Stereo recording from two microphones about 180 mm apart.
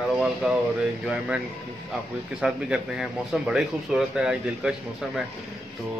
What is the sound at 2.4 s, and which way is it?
Speech, 5° right (ahead or behind).